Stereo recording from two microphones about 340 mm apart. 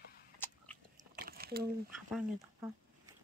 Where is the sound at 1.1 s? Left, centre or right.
Right.